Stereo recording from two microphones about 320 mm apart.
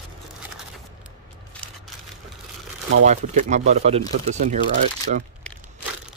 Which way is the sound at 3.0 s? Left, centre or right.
Right.